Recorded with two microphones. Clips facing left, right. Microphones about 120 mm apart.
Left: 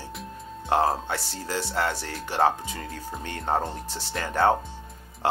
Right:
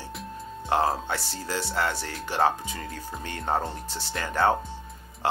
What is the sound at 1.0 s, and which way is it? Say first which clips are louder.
Speech: even; 35° left (ahead or behind).